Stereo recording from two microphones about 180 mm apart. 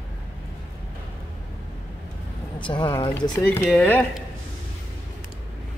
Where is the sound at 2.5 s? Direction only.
25° left (ahead or behind).